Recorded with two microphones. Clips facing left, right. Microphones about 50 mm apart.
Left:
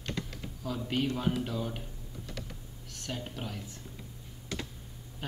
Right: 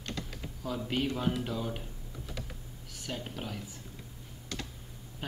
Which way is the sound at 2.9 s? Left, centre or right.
Centre.